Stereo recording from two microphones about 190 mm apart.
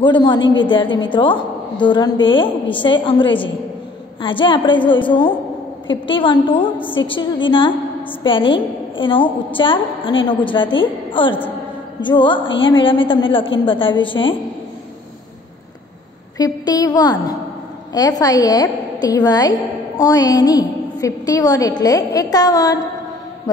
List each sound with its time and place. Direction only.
0.0 s a woman's voice: 25° left (ahead or behind)
16.3 s a woman's voice: 20° left (ahead or behind)